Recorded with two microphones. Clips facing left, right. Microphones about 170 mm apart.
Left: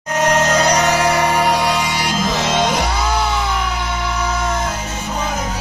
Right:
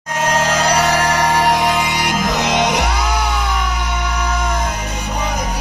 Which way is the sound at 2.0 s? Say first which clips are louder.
Right 1 dB; 60° right (ahead or behind).